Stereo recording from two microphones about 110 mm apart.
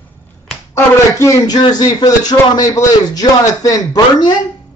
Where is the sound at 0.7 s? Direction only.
30° left (ahead or behind).